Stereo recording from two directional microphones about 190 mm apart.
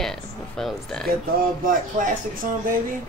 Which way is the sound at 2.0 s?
40° right (ahead or behind).